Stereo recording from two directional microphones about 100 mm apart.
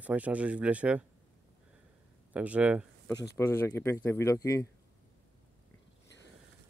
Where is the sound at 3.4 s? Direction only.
25° left (ahead or behind).